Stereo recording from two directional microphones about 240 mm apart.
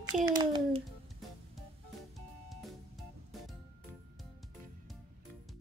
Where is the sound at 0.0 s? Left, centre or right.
Centre.